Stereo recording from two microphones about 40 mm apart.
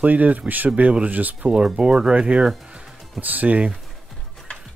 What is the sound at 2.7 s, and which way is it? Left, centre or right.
Music, right.